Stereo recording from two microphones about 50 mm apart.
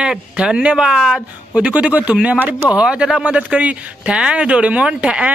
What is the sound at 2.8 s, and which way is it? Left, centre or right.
Speech, centre.